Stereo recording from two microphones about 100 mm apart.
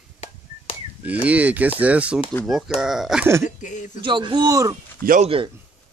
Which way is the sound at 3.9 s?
50° right (ahead or behind).